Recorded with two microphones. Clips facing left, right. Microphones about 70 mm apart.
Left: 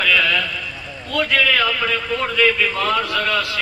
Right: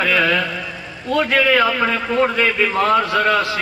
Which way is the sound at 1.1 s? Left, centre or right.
Right.